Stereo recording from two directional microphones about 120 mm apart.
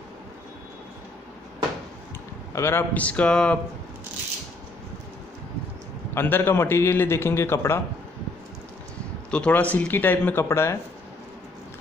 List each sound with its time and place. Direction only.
2.5 s speech: 20° left (ahead or behind)
6.1 s a man's voice: 20° left (ahead or behind)
9.3 s speech: 10° left (ahead or behind)